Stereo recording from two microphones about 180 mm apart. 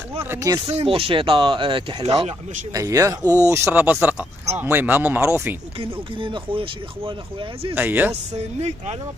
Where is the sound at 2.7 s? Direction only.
20° right (ahead or behind).